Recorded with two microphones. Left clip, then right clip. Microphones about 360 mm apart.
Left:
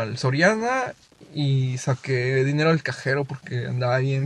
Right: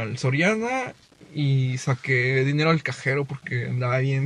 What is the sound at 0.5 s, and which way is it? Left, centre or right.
Mantra, left.